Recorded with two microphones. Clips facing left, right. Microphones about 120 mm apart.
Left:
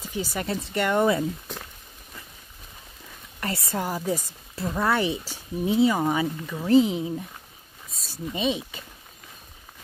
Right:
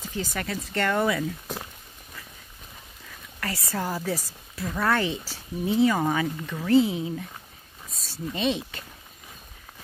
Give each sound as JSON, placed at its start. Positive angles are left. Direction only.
{"t": 0.0, "sound": "speech", "side_deg": 10}
{"t": 0.5, "sound": "speech", "side_deg": 30}
{"t": 3.3, "sound": "a sound", "side_deg": 25}
{"t": 3.8, "sound": "speech", "side_deg": 15}
{"t": 4.6, "sound": "speech", "side_deg": 25}
{"t": 4.8, "sound": "speech", "side_deg": 15}
{"t": 8.4, "sound": "speech", "side_deg": 5}